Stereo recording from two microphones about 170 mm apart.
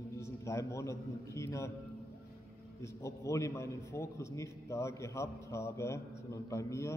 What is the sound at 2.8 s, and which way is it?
A man's voice, 20° left (ahead or behind).